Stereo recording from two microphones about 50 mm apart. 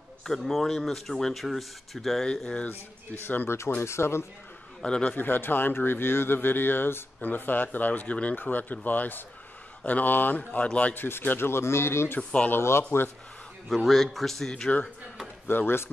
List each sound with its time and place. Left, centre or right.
0.2 s speech: centre
3.3 s speech: left
3.8 s speech: left
4.8 s a man's voice: centre
5.1 s speech: left
11.0 s speech: left
12.2 s speech: left
12.4 s speech: left
13.7 s speech: centre
15.4 s speech: left